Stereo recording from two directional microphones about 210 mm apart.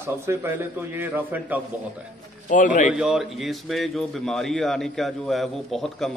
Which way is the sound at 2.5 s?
40° left (ahead or behind).